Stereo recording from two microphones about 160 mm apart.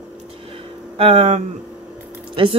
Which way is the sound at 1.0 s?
35° right (ahead or behind).